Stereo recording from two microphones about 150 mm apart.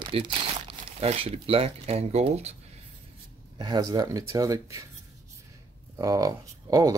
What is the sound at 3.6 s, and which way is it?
Speech, 25° right (ahead or behind).